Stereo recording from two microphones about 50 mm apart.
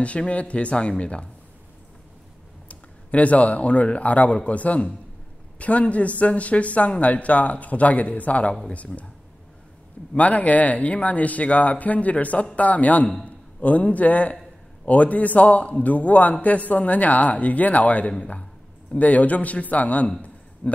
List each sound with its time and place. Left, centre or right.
0.0 s speech: left
2.7 s a man's voice: left
10.1 s speech: left